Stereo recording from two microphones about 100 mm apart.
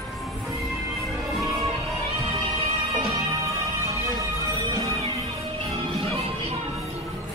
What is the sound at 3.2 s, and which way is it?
Music, 30° right (ahead or behind).